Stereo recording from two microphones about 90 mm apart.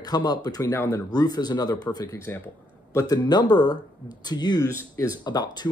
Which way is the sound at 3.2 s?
50° left (ahead or behind).